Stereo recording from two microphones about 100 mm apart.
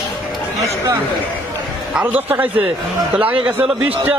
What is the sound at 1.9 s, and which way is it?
A man's voice, 15° right (ahead or behind).